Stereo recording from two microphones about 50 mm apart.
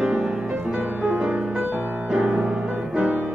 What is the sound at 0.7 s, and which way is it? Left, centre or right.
Music, right.